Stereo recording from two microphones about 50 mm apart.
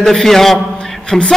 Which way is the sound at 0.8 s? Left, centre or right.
Centre.